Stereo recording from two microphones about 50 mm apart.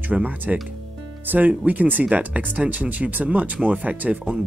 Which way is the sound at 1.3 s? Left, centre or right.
Right.